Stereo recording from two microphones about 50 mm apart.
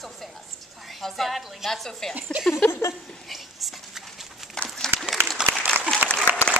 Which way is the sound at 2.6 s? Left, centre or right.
Left.